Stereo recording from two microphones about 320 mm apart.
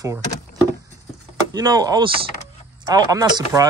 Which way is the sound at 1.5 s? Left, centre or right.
Centre.